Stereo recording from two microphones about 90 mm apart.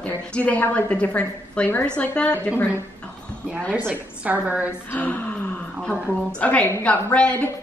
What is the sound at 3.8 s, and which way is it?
Speech, 15° right (ahead or behind).